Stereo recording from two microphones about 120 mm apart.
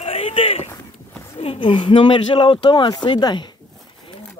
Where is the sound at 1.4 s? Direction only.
50° left (ahead or behind).